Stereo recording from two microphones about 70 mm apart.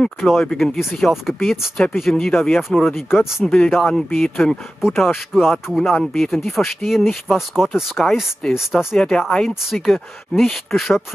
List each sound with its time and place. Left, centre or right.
0.0 s speech: centre
2.9 s speech: left
3.2 s speech: centre
3.4 s speech: centre